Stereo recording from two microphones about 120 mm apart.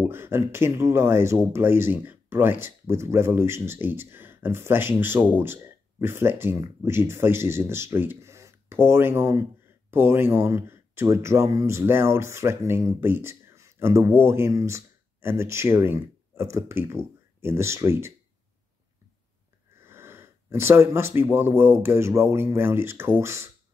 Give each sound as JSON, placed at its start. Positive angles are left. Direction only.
{"t": 0.0, "sound": "speech", "side_deg": -20}
{"t": 19.8, "sound": "speech", "side_deg": -20}